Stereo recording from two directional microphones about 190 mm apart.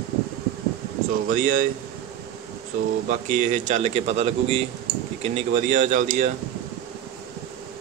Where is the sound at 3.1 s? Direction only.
40° right (ahead or behind).